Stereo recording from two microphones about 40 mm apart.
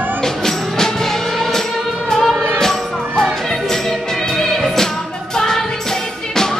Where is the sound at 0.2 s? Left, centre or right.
Centre.